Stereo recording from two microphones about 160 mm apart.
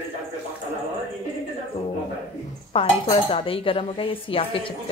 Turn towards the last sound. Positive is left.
turn(degrees=35)  # may be behind; listen again after turning